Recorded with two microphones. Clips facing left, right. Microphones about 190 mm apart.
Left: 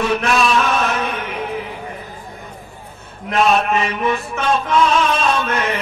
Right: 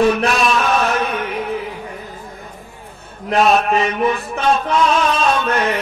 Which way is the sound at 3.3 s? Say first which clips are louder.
Right 1 dB; 35° right (ahead or behind).